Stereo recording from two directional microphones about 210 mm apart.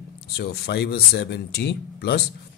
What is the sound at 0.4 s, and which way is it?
Speech, 50° left (ahead or behind).